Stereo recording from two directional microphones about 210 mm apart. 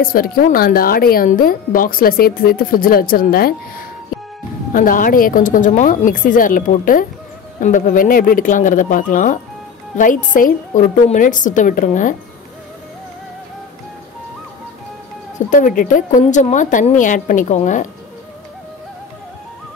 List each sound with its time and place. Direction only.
0.0 s speech: 45° left (ahead or behind)
4.7 s a woman's voice: 40° left (ahead or behind)
15.3 s a woman's voice: 40° left (ahead or behind)